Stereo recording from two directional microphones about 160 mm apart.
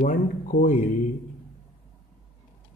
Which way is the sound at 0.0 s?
60° left (ahead or behind).